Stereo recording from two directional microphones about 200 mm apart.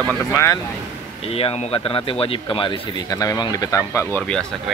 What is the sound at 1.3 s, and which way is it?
A man's voice, 30° left (ahead or behind).